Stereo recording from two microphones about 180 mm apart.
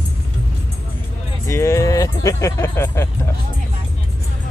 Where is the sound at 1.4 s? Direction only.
15° left (ahead or behind).